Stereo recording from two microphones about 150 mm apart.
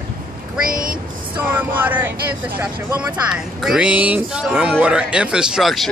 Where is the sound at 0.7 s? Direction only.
70° right (ahead or behind).